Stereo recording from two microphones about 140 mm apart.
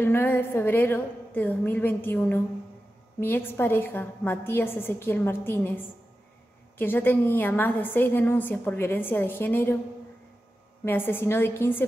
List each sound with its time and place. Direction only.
0.0 s a woman's voice: 15° left (ahead or behind)
6.8 s a woman's voice: 15° left (ahead or behind)
10.9 s a woman's voice: 15° left (ahead or behind)